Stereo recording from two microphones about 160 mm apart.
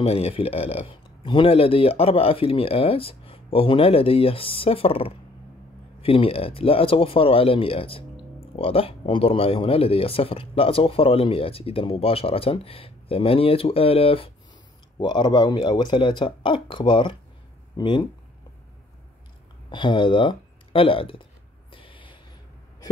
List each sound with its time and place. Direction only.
0.0 s speech: 40° left (ahead or behind)
19.7 s speech: 30° left (ahead or behind)
21.7 s vehicle: 30° left (ahead or behind)